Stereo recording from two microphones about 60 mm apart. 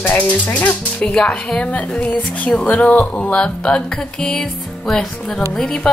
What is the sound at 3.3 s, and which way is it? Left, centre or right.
Music, centre.